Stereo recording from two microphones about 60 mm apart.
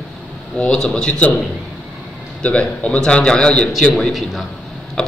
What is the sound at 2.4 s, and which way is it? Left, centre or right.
A man's voice, centre.